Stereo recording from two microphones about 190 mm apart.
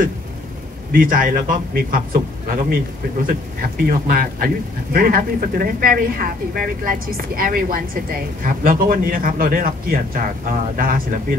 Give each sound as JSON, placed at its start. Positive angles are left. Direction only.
{"t": 0.9, "sound": "speech", "side_deg": -45}